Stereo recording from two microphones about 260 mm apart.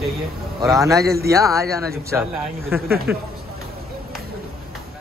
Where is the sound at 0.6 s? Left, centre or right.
Centre.